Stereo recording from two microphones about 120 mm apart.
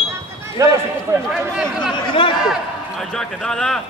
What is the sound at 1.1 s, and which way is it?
Speech, 20° right (ahead or behind).